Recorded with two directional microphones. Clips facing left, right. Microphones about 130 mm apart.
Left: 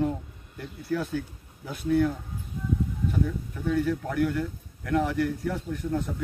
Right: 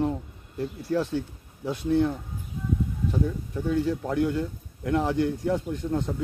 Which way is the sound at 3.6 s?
20° right (ahead or behind).